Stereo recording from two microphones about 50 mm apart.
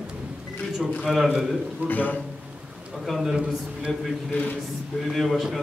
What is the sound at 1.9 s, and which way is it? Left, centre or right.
Speech, left.